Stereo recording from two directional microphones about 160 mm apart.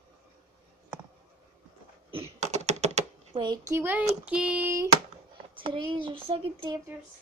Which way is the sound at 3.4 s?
25° right (ahead or behind).